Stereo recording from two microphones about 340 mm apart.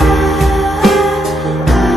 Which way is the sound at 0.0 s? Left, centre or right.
Centre.